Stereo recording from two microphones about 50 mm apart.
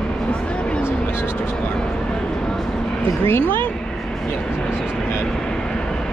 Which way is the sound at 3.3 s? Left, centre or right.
Left.